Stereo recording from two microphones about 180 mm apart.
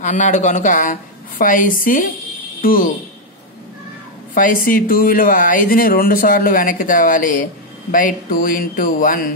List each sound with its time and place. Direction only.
0.0 s speech: 40° left (ahead or behind)
4.3 s speech: 50° left (ahead or behind)